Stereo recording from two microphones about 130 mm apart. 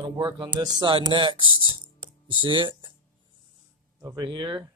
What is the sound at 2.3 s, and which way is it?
Speech, 40° right (ahead or behind).